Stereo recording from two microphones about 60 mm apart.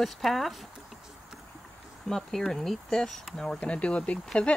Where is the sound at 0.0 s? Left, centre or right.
Centre.